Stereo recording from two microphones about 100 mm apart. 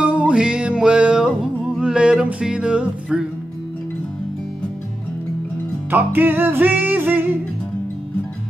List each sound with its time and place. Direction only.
0.0 s music: 10° right (ahead or behind)
5.9 s music: 20° right (ahead or behind)